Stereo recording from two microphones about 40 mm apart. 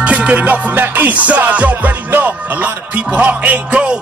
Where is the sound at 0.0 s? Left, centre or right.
Right.